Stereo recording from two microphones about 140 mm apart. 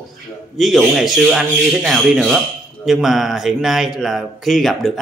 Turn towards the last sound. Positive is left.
turn(degrees=0)  # may be behind; listen again after turning